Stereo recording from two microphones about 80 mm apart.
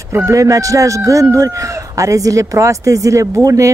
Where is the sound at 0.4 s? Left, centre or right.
Right.